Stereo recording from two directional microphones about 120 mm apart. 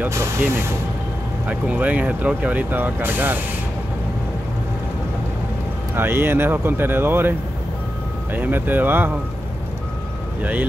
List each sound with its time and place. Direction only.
0.0 s speech: 25° right (ahead or behind)
5.9 s speech: 20° right (ahead or behind)